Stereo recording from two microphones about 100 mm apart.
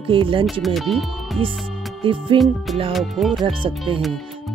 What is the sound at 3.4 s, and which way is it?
Speech, 60° right (ahead or behind).